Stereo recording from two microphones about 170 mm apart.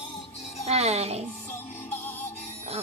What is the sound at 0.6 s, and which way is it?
Speech, 40° right (ahead or behind).